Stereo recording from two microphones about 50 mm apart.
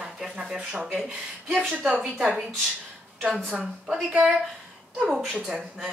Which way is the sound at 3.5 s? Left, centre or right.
Right.